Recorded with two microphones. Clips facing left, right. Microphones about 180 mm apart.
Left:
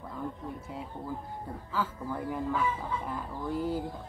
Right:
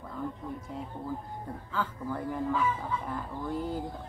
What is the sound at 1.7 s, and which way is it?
Speech, 5° left (ahead or behind).